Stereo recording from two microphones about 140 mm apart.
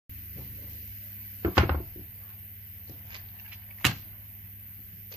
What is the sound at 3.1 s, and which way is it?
Clip-clop, 35° right (ahead or behind).